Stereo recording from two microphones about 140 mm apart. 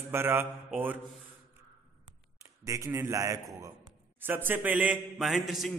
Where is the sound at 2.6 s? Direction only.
20° right (ahead or behind).